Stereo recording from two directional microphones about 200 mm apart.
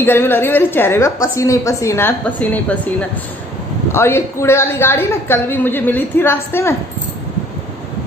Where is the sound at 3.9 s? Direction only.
10° left (ahead or behind).